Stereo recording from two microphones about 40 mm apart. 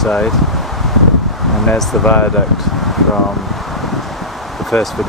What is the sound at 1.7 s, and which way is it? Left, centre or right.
Speech, centre.